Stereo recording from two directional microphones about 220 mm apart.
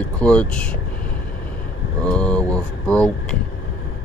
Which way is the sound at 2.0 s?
5° left (ahead or behind).